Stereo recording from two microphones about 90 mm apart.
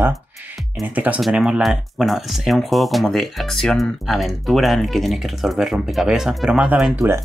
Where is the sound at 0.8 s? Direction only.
15° right (ahead or behind).